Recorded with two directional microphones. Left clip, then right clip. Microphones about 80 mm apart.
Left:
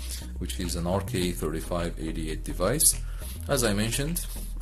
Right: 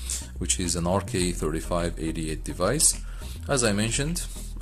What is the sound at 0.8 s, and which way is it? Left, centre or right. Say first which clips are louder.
Speech: even; right.